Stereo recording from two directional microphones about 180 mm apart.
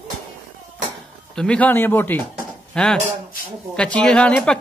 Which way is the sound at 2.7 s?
5° left (ahead or behind).